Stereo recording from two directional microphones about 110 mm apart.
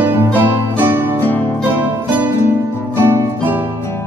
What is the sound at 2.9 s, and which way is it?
Music, 20° right (ahead or behind).